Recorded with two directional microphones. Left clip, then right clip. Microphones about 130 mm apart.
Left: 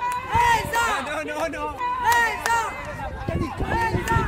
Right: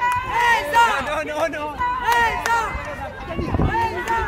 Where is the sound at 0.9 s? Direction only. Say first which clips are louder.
Right 4 dB; 10° right (ahead or behind).